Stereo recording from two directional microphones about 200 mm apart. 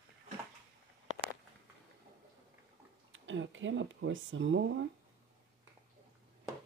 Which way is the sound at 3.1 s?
70° right (ahead or behind).